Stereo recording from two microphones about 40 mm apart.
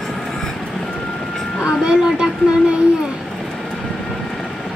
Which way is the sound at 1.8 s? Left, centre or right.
Right.